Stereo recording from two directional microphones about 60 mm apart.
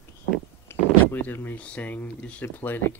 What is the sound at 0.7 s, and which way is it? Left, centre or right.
Speech, left.